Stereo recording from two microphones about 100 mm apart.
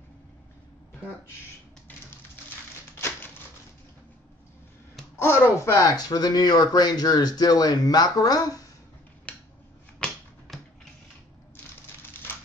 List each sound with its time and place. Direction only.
5.2 s speech: 25° left (ahead or behind)
5.8 s speech: 40° left (ahead or behind)
9.3 s scissors: 10° left (ahead or behind)
10.0 s finger snapping: 10° left (ahead or behind)
10.5 s a sound: centre (ahead or behind)